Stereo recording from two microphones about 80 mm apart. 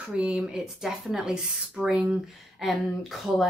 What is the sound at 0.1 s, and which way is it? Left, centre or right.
Speech, centre.